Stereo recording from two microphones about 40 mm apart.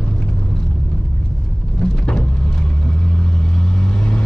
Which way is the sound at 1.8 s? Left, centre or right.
Left.